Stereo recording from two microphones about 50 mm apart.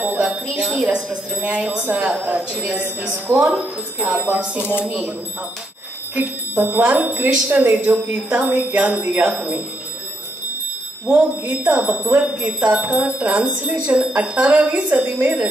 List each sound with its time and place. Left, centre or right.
0.2 s speech: centre
2.1 s speech: right
4.0 s speech: right
6.1 s speech: right
11.1 s speech: right